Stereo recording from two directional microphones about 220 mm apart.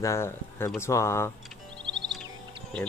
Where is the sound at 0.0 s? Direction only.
10° left (ahead or behind).